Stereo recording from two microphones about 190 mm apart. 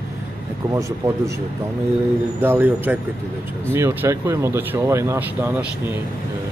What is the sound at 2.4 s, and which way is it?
Speech, 10° right (ahead or behind).